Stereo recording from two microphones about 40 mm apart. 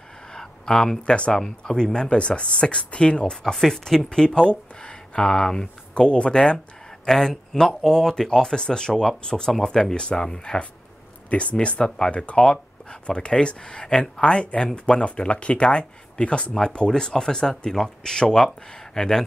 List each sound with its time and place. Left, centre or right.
0.3 s speech: centre
2.0 s speech: left
3.5 s speech: centre
11.2 s speech: left; by 19.2 s centre